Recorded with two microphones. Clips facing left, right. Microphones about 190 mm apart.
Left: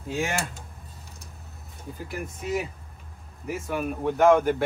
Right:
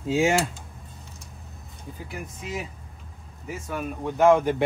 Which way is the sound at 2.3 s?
Centre (ahead or behind).